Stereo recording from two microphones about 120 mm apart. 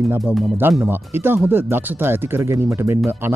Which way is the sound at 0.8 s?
15° right (ahead or behind).